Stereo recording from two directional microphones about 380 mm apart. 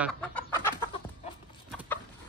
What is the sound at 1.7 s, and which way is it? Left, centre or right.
Chicken, centre.